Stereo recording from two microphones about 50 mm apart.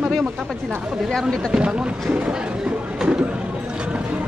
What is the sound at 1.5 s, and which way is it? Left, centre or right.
Speech, right.